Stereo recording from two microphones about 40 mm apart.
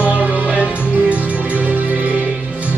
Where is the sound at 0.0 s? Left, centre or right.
Right.